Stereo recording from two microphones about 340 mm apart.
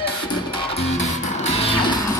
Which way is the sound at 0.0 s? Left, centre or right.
Centre.